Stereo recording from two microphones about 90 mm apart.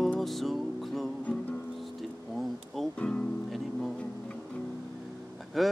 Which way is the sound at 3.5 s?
Centre (ahead or behind).